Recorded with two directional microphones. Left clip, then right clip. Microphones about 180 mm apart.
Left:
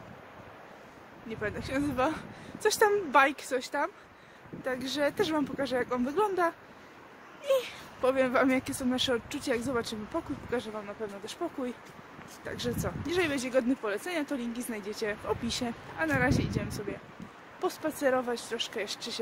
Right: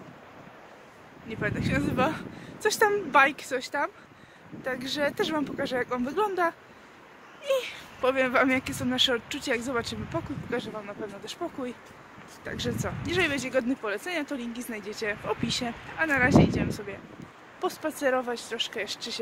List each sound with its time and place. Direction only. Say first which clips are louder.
1.3 s speech: right 4 dB; 5° left (ahead or behind)